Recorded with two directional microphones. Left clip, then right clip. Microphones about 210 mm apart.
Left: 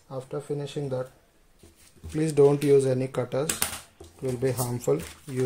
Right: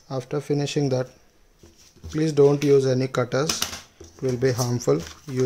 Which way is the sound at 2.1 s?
5° right (ahead or behind).